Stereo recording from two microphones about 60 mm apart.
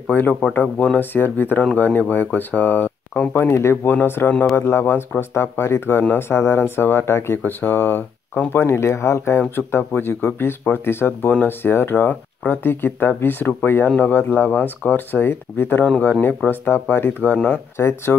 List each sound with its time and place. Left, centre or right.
0.0 s a man's voice: left
17.7 s speech: left